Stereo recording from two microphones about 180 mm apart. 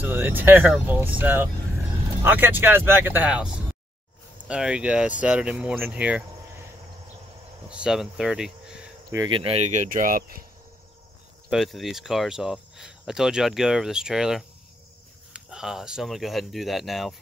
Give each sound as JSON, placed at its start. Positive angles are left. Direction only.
{"t": 0.0, "sound": "speech", "side_deg": -10}
{"t": 7.7, "sound": "speech", "side_deg": -5}
{"t": 9.1, "sound": "speech", "side_deg": -25}
{"t": 11.5, "sound": "speech", "side_deg": 0}